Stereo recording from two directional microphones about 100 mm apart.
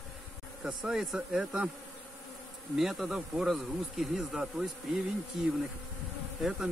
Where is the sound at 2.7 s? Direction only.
Centre (ahead or behind).